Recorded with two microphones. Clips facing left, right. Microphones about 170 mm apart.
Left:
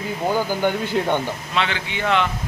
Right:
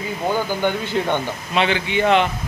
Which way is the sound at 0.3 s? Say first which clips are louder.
Even; 5° left (ahead or behind).